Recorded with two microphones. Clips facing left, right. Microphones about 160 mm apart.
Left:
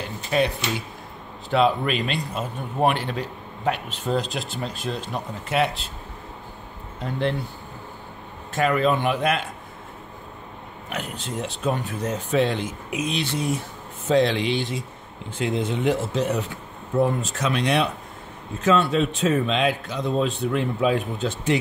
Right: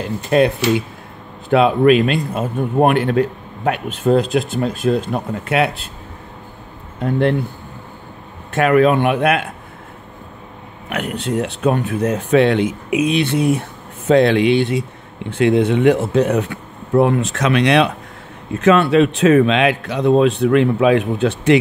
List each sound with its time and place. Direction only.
1.5 s speech: 55° right (ahead or behind)
7.0 s speech: 55° right (ahead or behind)
8.5 s speech: 65° right (ahead or behind)
10.9 s speech: 65° right (ahead or behind)
18.5 s speech: 70° right (ahead or behind)